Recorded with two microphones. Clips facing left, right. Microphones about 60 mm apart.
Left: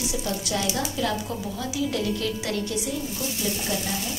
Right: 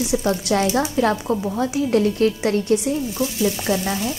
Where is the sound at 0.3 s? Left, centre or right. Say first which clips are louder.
Right 8 dB; right.